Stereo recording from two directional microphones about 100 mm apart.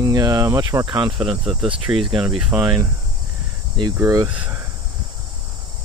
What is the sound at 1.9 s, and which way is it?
Speech, 20° right (ahead or behind).